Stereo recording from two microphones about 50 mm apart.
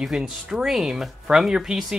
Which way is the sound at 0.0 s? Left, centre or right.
Centre.